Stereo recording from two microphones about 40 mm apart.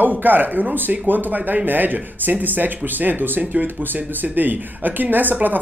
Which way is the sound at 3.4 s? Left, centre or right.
Right.